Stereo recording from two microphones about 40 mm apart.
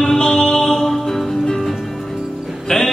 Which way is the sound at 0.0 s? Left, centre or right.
Centre.